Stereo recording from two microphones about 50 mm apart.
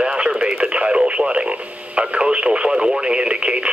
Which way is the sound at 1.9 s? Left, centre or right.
Right.